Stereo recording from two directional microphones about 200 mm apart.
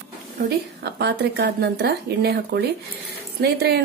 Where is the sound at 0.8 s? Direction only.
55° right (ahead or behind).